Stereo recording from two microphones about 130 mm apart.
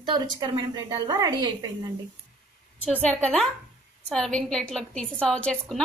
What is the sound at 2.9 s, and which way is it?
A woman's voice, 10° left (ahead or behind).